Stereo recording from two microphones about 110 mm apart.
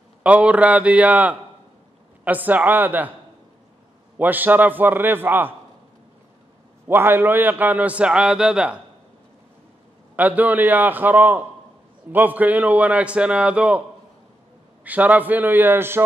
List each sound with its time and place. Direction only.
0.2 s a man's voice: 10° right (ahead or behind)
4.2 s a man's voice: 15° right (ahead or behind)
6.9 s a man's voice: 20° right (ahead or behind)
10.1 s a man's voice: 15° right (ahead or behind)
14.9 s a man's voice: 15° right (ahead or behind)